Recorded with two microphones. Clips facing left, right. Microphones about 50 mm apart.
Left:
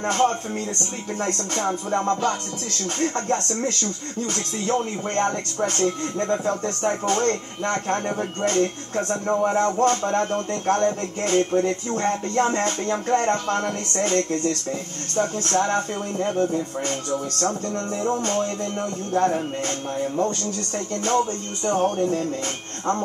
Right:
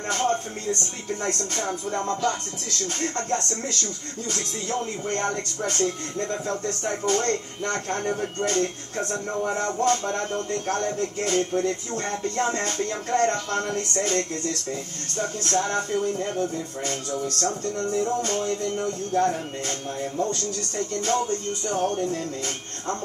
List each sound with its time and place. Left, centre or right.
0.0 s a man's voice: left
4.7 s a man's voice: left
12.9 s a man's voice: left
21.6 s a man's voice: left